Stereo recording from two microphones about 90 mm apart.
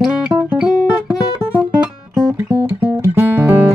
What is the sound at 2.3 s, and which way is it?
Music, 20° right (ahead or behind).